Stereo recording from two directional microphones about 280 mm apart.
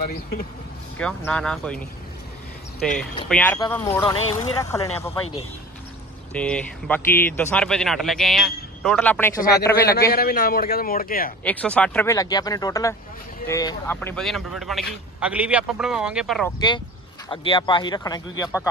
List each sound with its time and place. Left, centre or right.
0.0 s a man's voice: left
0.9 s speech: centre
9.8 s a man's voice: left
11.4 s speech: centre
16.5 s speech: centre